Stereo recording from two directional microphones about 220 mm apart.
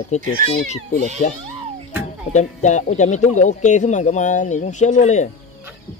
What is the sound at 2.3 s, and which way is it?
Speech, 30° left (ahead or behind).